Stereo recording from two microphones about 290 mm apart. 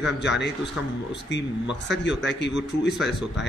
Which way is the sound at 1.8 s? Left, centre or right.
Left.